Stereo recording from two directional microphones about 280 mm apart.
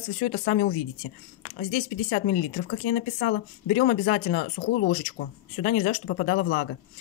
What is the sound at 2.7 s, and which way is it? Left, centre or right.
Speech, left.